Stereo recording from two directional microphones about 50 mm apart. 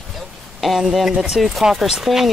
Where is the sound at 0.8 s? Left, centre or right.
Centre.